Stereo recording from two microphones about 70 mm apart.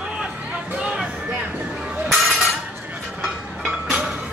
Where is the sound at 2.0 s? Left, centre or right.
Centre.